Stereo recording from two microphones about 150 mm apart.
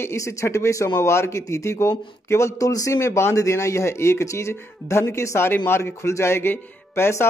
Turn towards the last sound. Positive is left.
turn(degrees=15)  # may be behind; listen again after turning